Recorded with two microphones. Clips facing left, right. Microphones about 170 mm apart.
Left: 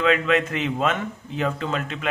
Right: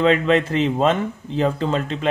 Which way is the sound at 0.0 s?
30° right (ahead or behind).